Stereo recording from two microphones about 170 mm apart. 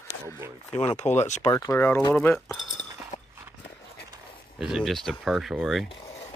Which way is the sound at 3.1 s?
45° left (ahead or behind).